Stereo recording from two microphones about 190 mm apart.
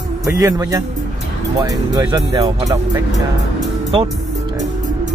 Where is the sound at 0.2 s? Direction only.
20° right (ahead or behind).